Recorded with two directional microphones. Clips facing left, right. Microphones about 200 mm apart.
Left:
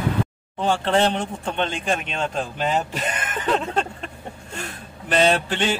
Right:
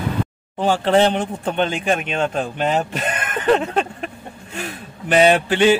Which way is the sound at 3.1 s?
60° right (ahead or behind).